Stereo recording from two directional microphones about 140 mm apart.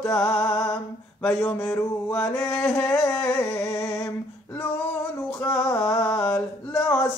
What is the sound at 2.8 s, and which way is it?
Mantra, 20° left (ahead or behind).